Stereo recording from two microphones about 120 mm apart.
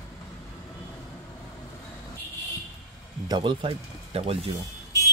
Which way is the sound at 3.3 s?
40° right (ahead or behind).